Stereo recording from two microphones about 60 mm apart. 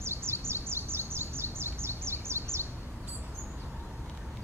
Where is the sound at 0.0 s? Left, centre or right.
Right.